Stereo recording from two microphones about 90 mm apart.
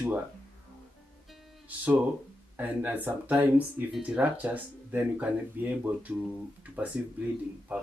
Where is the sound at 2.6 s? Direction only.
20° right (ahead or behind).